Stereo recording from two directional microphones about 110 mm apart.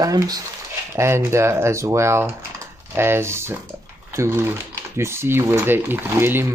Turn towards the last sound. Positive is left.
turn(degrees=-20)  # may be behind; listen again after turning